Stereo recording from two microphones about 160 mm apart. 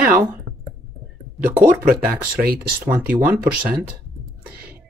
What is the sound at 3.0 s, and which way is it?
Speech, 10° right (ahead or behind).